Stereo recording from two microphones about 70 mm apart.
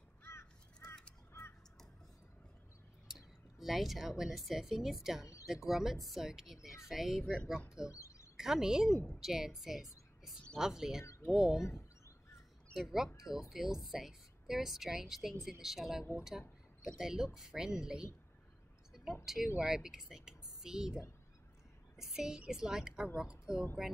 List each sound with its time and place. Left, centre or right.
0.2 s crow: left
3.1 s speech: centre
5.2 s a woman's voice: left
5.5 s a woman's voice: centre
7.9 s a sound: left
8.4 s a woman's voice: centre
12.7 s a woman's voice: centre
19.3 s a woman's voice: centre